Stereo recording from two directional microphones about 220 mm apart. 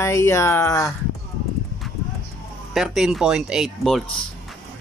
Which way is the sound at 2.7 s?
Centre (ahead or behind).